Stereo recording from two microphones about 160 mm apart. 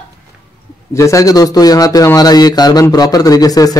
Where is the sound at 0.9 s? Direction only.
20° left (ahead or behind).